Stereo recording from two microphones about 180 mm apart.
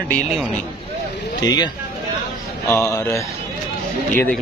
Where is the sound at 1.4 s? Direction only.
25° left (ahead or behind).